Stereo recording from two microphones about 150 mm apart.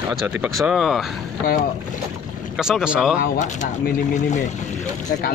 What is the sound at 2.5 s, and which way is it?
Speech, 5° right (ahead or behind).